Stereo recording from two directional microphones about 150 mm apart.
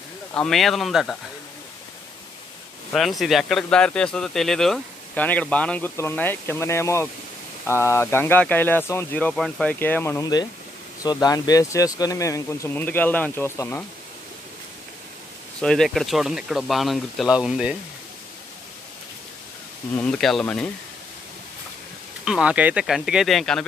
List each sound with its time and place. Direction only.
0.3 s speech: 5° left (ahead or behind)
2.9 s speech: centre (ahead or behind)
15.6 s speech: 5° left (ahead or behind)
20.0 s speech: 5° left (ahead or behind)
22.2 s speech: 5° right (ahead or behind)